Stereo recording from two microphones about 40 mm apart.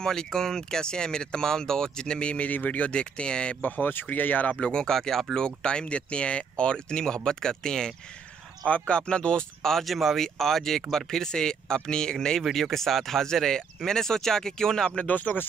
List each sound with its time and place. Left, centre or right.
0.0 s speech: centre; by 2.9 s left
2.9 s speech: left
3.6 s speech: left
4.6 s speech: left
8.6 s speech: left
9.6 s speech: centre
15.0 s speech: left